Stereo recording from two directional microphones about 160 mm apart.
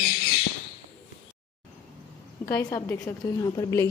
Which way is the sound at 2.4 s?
15° left (ahead or behind).